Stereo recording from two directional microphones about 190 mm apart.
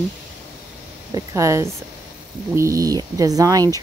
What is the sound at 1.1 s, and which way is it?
Speech, 15° right (ahead or behind).